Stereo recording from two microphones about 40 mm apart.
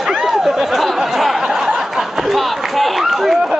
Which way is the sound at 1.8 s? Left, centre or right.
Centre.